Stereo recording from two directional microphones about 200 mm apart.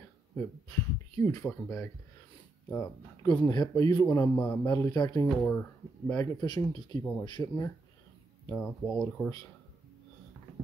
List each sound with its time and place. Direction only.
0.4 s speech: 15° left (ahead or behind)
5.3 s speech: 10° left (ahead or behind)
8.8 s speech: 5° left (ahead or behind)